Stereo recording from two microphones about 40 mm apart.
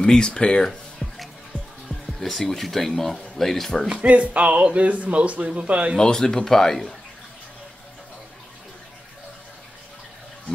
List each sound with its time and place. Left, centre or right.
0.0 s speech: centre
1.0 s music: centre
1.9 s speech: centre
3.9 s speech: right
5.9 s speech: centre